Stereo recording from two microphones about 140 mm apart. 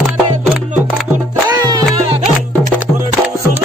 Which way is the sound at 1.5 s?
30° right (ahead or behind).